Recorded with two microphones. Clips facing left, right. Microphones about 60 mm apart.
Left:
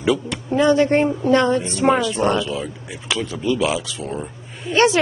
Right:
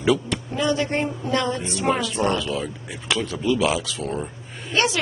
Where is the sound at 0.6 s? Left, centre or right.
Left.